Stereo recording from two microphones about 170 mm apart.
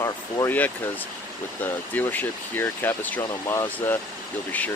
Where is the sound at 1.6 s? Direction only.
10° left (ahead or behind).